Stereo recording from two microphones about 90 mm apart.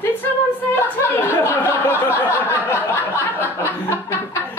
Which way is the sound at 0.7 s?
25° left (ahead or behind).